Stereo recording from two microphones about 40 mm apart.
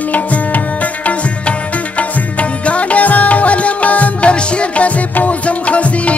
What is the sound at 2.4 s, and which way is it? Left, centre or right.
Music, left.